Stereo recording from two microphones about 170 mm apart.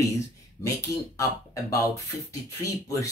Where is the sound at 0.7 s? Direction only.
20° left (ahead or behind).